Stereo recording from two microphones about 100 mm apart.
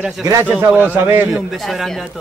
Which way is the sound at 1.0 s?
25° right (ahead or behind).